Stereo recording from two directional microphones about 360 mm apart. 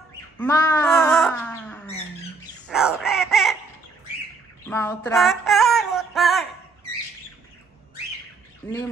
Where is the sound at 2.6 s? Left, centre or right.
Centre.